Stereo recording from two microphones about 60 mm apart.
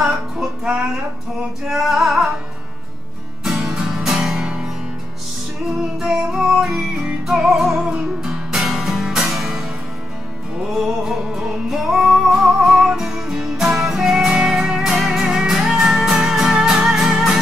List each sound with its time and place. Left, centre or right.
0.0 s music: centre
1.7 s music: centre
3.4 s music: centre
5.9 s music: centre
10.7 s music: centre